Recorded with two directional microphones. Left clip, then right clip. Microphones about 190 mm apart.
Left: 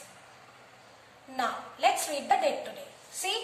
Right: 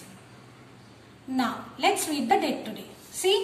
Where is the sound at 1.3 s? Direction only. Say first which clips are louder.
Right 2 dB; 5° left (ahead or behind).